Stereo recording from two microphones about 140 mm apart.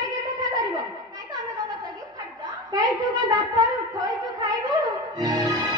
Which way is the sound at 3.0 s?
25° right (ahead or behind).